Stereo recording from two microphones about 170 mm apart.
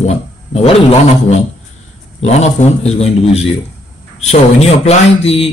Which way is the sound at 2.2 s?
40° left (ahead or behind).